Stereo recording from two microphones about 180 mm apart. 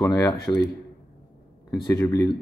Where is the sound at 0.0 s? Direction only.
20° left (ahead or behind).